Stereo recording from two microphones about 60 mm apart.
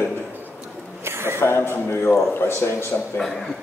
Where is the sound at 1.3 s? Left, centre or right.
Left.